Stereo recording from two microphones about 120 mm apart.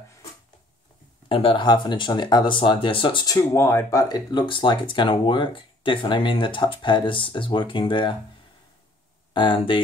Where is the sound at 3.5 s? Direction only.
20° left (ahead or behind).